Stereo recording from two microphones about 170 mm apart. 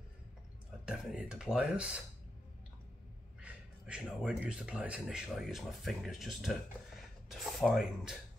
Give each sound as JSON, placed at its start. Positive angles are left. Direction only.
{"t": 0.8, "sound": "speech", "side_deg": -5}
{"t": 3.3, "sound": "speech", "side_deg": -5}